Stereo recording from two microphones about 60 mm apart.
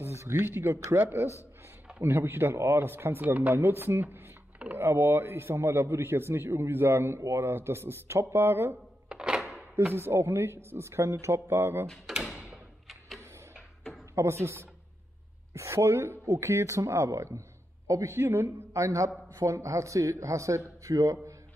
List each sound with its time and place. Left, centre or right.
0.0 s a man's voice: right
2.0 s a man's voice: right
9.1 s thunk: centre
9.9 s a man's voice: right
14.1 s a man's voice: right
15.5 s a man's voice: right
18.1 s a man's voice: right
18.7 s a man's voice: right